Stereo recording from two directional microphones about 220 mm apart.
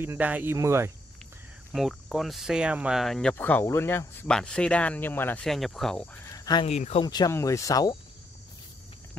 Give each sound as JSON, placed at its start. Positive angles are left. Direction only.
{"t": 0.0, "sound": "speech", "side_deg": -10}
{"t": 1.7, "sound": "speech", "side_deg": 0}
{"t": 6.3, "sound": "speech", "side_deg": 15}